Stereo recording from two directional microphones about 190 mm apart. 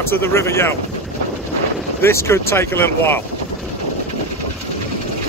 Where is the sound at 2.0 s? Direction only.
15° left (ahead or behind).